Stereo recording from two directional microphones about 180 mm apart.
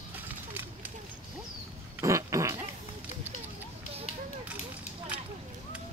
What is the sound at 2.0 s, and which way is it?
Pig, 15° right (ahead or behind).